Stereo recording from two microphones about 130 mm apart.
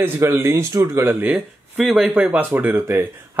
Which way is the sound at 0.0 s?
20° right (ahead or behind).